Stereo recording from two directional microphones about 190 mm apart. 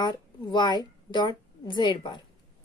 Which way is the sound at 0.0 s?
25° left (ahead or behind).